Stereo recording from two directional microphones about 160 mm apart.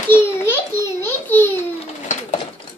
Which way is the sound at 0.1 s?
15° left (ahead or behind).